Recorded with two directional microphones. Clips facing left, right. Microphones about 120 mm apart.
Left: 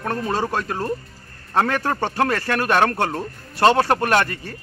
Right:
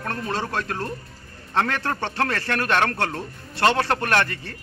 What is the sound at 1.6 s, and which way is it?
Speech, 40° left (ahead or behind).